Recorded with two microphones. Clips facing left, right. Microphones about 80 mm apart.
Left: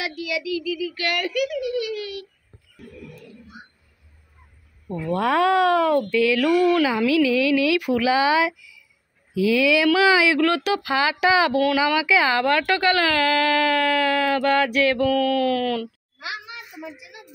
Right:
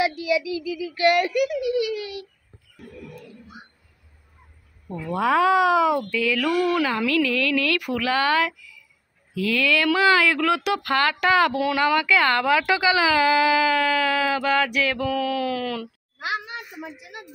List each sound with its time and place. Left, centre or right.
0.0 s speech: right
4.9 s speech: centre
13.6 s speech: centre
16.2 s a sound: right